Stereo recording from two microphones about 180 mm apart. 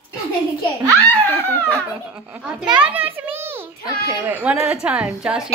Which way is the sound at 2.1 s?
5° right (ahead or behind).